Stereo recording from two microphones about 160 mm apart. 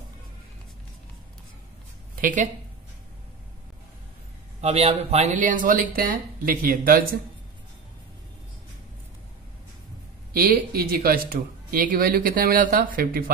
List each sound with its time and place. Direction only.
2.2 s a man's voice: 50° right (ahead or behind)
4.6 s a man's voice: 40° right (ahead or behind); by 7.1 s 65° right (ahead or behind)
10.3 s speech: 70° right (ahead or behind)